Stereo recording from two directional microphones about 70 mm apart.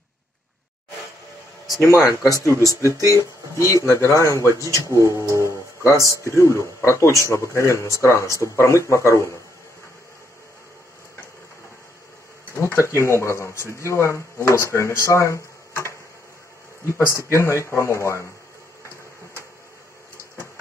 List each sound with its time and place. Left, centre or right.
1.9 s speech: left
12.6 s speech: left